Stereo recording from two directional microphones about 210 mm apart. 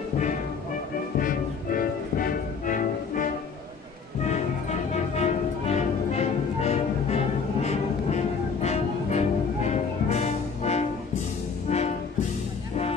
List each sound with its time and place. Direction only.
1.2 s music: 40° left (ahead or behind)
4.3 s music: 35° left (ahead or behind)